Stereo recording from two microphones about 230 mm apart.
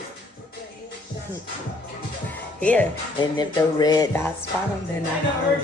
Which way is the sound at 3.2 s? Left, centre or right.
Centre.